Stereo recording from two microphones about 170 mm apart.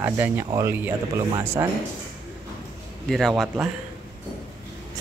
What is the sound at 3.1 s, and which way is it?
Speech, centre (ahead or behind).